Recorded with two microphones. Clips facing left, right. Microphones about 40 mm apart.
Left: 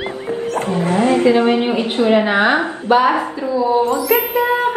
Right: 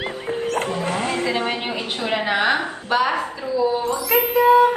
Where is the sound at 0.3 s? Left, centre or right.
Right.